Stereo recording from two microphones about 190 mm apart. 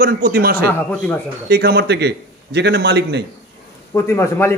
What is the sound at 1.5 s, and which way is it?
A man's voice, 55° right (ahead or behind).